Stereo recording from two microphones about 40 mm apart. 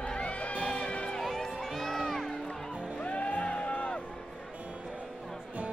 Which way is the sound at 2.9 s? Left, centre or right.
Left.